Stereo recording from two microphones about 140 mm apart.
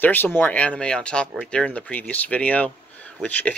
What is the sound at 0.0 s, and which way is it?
Speech, 15° left (ahead or behind).